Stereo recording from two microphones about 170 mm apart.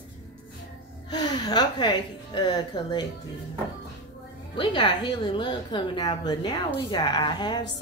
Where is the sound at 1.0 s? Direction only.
25° left (ahead or behind).